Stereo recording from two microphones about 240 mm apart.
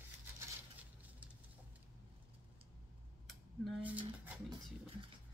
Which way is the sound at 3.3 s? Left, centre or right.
Centre.